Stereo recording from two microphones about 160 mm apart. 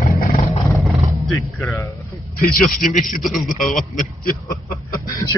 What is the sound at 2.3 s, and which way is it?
Speech, 60° left (ahead or behind).